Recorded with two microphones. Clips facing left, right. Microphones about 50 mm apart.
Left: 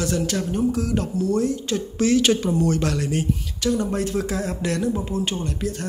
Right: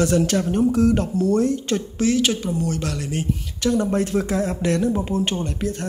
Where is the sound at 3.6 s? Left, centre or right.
Right.